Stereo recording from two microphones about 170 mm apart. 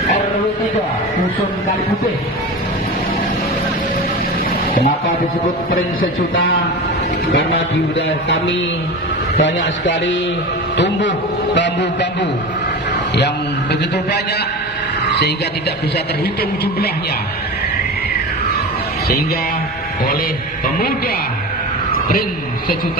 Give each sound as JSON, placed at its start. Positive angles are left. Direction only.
{"t": 5.7, "sound": "a man's voice", "side_deg": 60}
{"t": 9.4, "sound": "a man's voice", "side_deg": 90}
{"t": 13.1, "sound": "a man's voice", "side_deg": 80}